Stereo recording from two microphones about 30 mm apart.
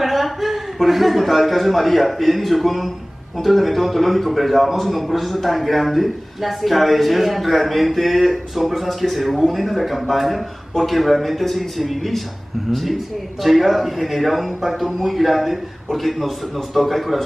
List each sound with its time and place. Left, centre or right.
0.0 s a man's voice: centre
13.4 s a man's voice: centre